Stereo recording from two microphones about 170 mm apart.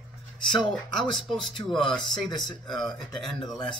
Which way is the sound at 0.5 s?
Centre (ahead or behind).